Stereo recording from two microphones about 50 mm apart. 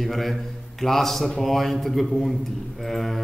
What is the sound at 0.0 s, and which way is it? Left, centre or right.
Mantra, centre.